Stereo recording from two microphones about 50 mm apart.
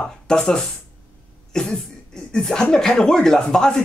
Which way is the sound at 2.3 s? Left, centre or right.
Centre.